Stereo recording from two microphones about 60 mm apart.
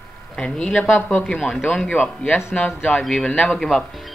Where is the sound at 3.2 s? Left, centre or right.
Centre.